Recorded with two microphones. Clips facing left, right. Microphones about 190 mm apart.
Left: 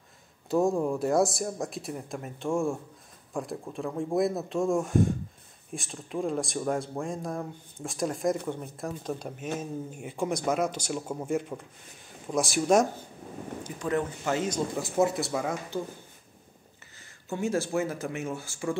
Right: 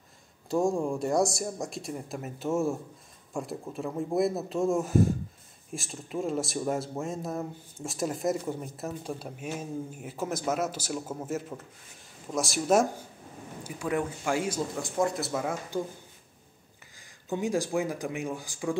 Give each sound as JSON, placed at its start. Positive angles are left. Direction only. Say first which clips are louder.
{"t": 0.5, "sound": "a man's voice", "louder": "left 1 dB", "side_deg": 0}
{"t": 14.8, "sound": "speech", "louder": "left 4 dB", "side_deg": 5}
{"t": 15.7, "sound": "a man's voice", "louder": "right 4 dB", "side_deg": -15}
{"t": 16.9, "sound": "speech", "louder": "right 2 dB", "side_deg": -15}